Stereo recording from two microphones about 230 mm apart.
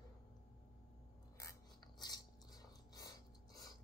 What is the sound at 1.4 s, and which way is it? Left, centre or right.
Mechanisms, centre.